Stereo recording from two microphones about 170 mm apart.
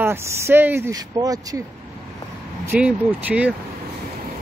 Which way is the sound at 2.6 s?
10° right (ahead or behind).